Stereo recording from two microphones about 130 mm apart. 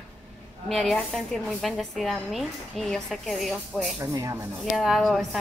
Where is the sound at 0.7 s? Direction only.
Centre (ahead or behind).